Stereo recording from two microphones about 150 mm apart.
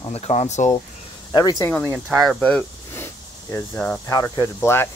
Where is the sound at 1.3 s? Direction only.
25° left (ahead or behind).